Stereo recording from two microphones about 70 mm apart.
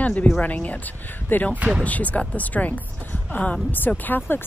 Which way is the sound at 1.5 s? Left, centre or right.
Centre.